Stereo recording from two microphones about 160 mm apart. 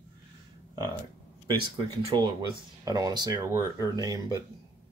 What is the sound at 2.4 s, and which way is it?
Speech, 25° right (ahead or behind).